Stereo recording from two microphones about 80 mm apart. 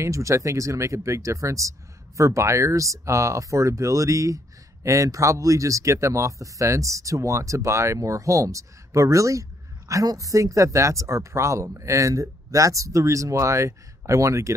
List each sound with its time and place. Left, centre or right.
0.0 s speech: right